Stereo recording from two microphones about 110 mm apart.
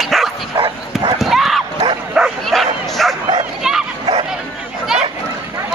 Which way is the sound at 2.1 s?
5° right (ahead or behind).